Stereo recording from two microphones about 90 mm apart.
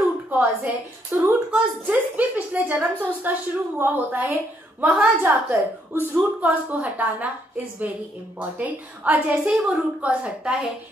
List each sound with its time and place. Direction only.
0.3 s a woman's voice: 15° right (ahead or behind)